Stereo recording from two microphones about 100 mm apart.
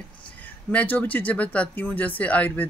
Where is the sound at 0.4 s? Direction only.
15° left (ahead or behind).